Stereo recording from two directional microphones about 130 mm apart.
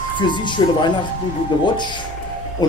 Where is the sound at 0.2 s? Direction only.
35° left (ahead or behind).